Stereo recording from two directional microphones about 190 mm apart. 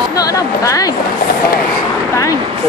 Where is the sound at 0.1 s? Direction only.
20° left (ahead or behind).